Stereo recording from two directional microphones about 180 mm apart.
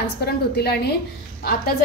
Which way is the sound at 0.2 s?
65° left (ahead or behind).